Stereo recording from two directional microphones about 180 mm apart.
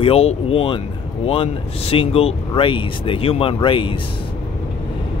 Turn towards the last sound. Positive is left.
turn(degrees=30)  # may be behind; listen again after turning